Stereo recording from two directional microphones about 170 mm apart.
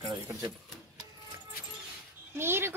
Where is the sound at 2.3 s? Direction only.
15° right (ahead or behind).